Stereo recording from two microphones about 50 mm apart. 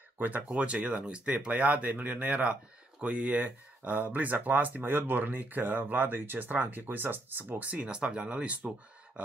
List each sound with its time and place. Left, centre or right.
0.2 s speech: right